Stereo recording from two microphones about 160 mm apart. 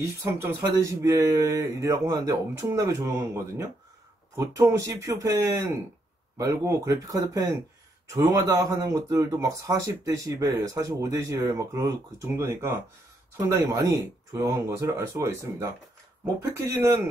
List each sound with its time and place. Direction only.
0.0 s a man's voice: 20° right (ahead or behind)
4.4 s a man's voice: 20° right (ahead or behind)